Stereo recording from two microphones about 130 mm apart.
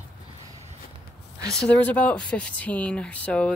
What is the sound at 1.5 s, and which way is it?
Speech, 10° left (ahead or behind).